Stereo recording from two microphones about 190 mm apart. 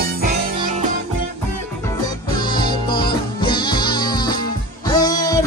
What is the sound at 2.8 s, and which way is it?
Music, 25° left (ahead or behind).